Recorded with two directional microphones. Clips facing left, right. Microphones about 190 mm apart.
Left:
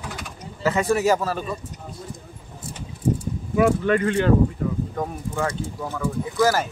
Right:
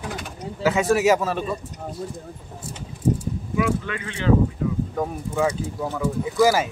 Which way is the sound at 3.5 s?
45° left (ahead or behind).